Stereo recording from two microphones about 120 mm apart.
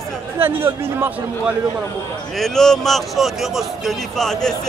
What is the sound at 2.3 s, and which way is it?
Speech, 5° left (ahead or behind).